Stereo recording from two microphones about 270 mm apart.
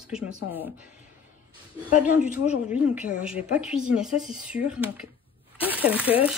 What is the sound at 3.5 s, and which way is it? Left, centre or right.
Speech, centre.